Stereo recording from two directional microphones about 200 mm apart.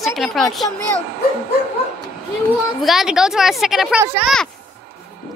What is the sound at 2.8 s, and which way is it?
A woman's voice, centre (ahead or behind).